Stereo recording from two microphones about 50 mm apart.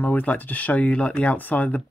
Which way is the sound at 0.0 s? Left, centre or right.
Left.